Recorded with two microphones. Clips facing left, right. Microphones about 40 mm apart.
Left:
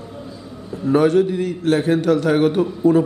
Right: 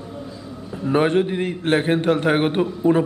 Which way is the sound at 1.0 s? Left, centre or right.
Right.